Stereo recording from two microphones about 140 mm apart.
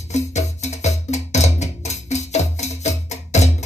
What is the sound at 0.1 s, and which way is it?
Music, 55° left (ahead or behind).